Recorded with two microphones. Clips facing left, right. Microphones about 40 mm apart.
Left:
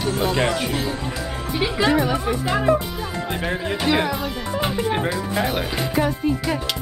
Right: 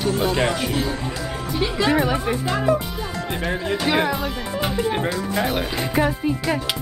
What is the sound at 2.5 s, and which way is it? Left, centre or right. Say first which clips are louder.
Music: left 2 dB; centre.